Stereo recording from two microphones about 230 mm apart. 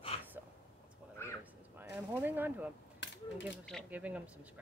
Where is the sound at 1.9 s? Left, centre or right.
Centre.